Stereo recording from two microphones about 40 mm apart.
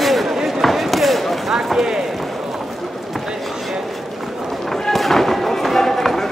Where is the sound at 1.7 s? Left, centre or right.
Centre.